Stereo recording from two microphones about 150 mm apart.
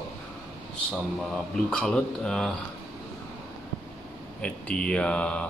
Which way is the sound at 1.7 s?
5° left (ahead or behind).